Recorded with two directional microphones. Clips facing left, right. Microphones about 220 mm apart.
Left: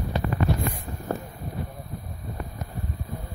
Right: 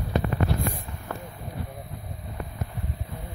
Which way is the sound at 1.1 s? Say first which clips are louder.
Left 6 dB; 40° left (ahead or behind).